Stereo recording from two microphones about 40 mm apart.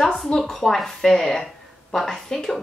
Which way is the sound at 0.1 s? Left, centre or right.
Centre.